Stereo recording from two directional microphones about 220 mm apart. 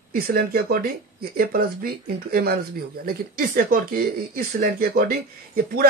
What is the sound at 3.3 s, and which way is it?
Speech, 40° right (ahead or behind).